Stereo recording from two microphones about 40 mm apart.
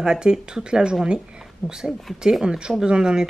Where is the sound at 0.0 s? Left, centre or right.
Centre.